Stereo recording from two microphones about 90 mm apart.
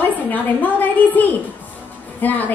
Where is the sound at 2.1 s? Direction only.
20° left (ahead or behind).